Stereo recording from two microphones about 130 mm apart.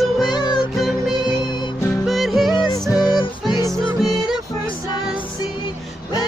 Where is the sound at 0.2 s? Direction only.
35° left (ahead or behind).